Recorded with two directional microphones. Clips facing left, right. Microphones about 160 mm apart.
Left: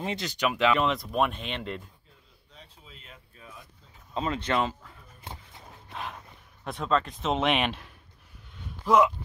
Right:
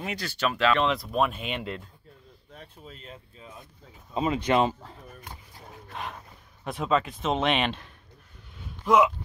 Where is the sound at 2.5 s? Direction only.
55° right (ahead or behind).